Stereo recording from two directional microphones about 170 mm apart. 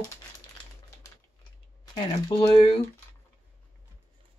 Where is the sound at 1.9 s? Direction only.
30° left (ahead or behind).